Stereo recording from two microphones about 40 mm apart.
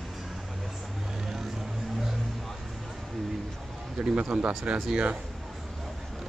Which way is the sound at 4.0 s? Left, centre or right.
Right.